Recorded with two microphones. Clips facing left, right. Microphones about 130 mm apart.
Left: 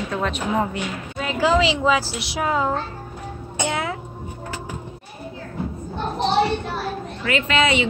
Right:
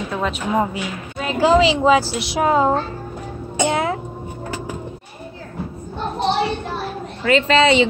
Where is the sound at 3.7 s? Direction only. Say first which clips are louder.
Right 5 dB; 30° right (ahead or behind).